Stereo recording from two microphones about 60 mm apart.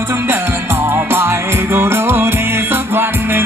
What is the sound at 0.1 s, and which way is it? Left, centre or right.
Music, right.